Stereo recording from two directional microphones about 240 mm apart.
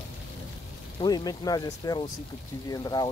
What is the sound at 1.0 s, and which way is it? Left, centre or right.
Speech, centre.